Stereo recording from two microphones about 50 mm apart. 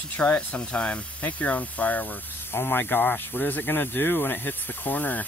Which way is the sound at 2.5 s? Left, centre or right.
Left.